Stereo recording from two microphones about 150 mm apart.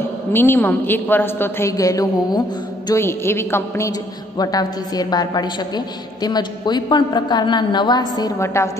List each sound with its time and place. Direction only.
0.3 s a woman's voice: 15° left (ahead or behind)